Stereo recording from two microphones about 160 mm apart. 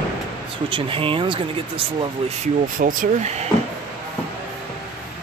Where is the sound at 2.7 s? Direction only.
50° right (ahead or behind).